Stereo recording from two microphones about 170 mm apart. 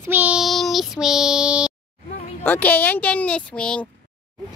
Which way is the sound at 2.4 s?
10° left (ahead or behind).